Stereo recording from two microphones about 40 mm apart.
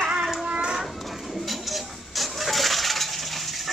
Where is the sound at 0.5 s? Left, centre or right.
Right.